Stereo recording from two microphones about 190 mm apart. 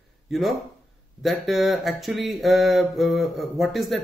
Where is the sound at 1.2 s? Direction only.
Centre (ahead or behind).